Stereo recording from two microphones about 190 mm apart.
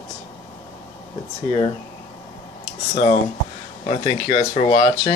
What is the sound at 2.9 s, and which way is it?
Speech, 35° left (ahead or behind).